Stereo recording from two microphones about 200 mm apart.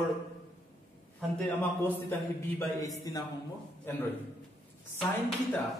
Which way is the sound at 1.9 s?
10° left (ahead or behind).